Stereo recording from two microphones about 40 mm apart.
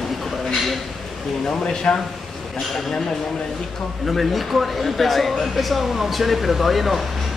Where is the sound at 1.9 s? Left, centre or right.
Left.